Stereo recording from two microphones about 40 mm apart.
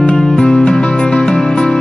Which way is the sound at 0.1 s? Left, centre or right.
Centre.